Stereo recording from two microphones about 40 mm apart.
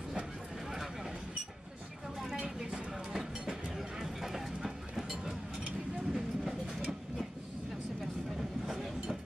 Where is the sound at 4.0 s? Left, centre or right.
Centre.